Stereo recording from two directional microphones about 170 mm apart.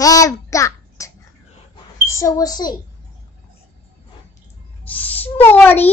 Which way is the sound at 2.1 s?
20° left (ahead or behind).